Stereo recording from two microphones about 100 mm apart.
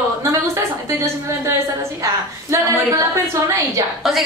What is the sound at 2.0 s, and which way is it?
A woman's voice, 30° right (ahead or behind).